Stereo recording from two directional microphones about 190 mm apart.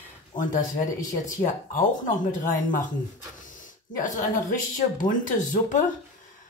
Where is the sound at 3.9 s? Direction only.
45° left (ahead or behind).